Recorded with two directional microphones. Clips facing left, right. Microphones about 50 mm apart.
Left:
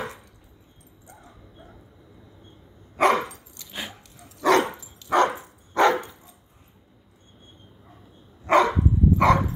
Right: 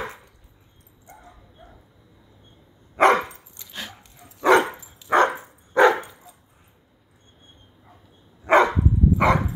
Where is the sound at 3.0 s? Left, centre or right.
Right.